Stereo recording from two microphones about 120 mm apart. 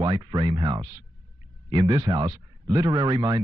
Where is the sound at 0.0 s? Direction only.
35° right (ahead or behind).